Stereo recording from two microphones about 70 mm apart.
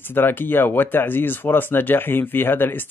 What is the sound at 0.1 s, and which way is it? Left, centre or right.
Speech, left.